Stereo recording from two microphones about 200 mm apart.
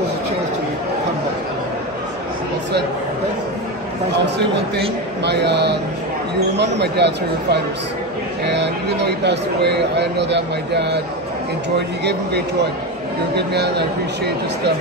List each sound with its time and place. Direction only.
5.2 s speech: 55° right (ahead or behind)
12.0 s speech: 55° right (ahead or behind)